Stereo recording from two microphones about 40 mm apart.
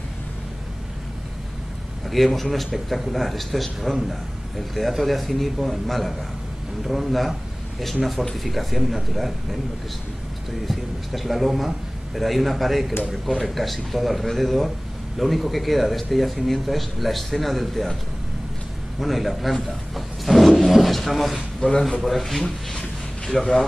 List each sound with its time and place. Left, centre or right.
2.0 s speech: centre
10.7 s speech: centre
18.9 s speech: centre
20.2 s vehicle: centre
21.6 s a man's voice: left
22.0 s speech: centre
22.4 s a sound: centre
23.3 s speech: centre